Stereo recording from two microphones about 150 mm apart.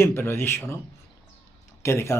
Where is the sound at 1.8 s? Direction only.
20° left (ahead or behind).